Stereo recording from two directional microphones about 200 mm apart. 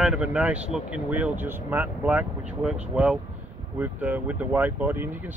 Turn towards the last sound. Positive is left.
turn(degrees=-10)  # may be behind; listen again after turning